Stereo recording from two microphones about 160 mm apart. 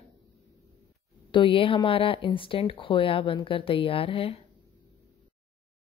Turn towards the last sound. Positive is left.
turn(degrees=35)  # may be behind; listen again after turning